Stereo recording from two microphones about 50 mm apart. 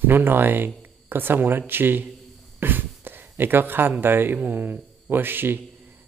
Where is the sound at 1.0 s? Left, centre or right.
Right.